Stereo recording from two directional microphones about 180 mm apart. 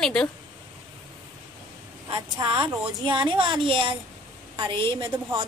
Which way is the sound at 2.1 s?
25° right (ahead or behind).